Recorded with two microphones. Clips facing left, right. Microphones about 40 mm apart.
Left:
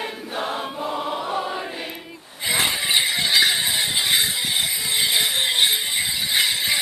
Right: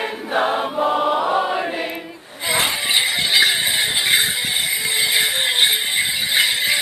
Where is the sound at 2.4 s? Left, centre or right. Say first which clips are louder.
Right 2 dB; centre.